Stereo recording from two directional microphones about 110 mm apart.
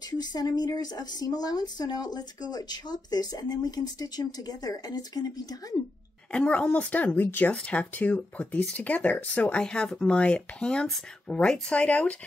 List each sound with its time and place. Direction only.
0.2 s speech: 40° left (ahead or behind)
6.3 s speech: 10° left (ahead or behind)